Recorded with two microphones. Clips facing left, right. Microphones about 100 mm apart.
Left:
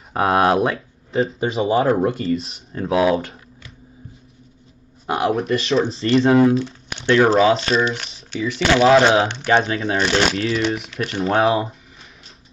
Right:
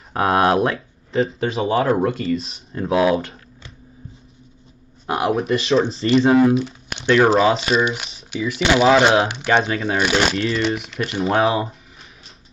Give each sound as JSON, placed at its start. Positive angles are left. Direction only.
{"t": 0.1, "sound": "speech", "side_deg": 0}
{"t": 1.6, "sound": "speech", "side_deg": 30}
{"t": 2.4, "sound": "speech", "side_deg": 0}
{"t": 5.0, "sound": "speech", "side_deg": 0}
{"t": 8.8, "sound": "speech", "side_deg": 0}